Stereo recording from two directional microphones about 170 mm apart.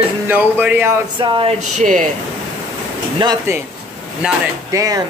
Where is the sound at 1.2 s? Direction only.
30° right (ahead or behind).